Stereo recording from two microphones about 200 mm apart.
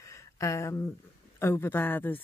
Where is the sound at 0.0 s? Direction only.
15° left (ahead or behind).